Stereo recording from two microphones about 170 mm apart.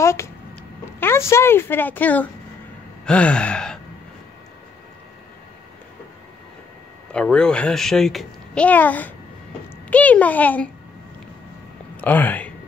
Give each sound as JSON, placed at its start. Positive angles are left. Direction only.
{"t": 0.0, "sound": "speech", "side_deg": 15}
{"t": 3.1, "sound": "gasp", "side_deg": 5}
{"t": 7.1, "sound": "a child's voice", "side_deg": 5}
{"t": 12.0, "sound": "speech", "side_deg": 10}